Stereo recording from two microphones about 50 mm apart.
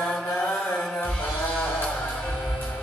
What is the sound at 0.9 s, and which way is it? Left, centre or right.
Music, centre.